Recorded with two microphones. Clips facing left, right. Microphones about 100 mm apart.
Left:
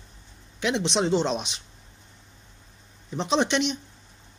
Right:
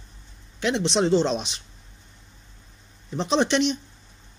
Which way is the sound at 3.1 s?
10° left (ahead or behind).